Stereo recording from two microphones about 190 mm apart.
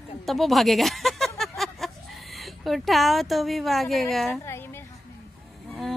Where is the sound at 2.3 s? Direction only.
Centre (ahead or behind).